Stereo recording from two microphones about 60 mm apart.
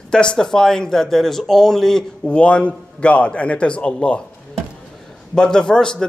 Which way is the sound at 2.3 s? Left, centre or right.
Centre.